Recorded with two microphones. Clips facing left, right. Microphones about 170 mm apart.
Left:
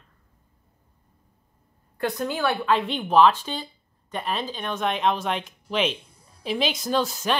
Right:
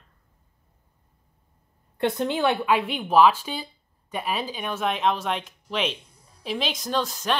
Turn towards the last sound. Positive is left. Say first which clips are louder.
# left 2 dB
turn(degrees=0)  # may be behind; listen again after turning